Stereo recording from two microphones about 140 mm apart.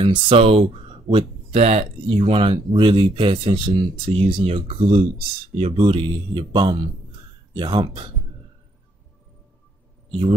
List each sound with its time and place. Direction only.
0.0 s speech: 35° right (ahead or behind)